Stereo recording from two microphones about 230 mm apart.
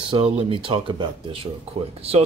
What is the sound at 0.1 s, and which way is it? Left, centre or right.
Speech, right.